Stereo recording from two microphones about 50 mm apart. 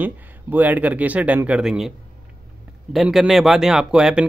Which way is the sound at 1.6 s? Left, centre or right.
Centre.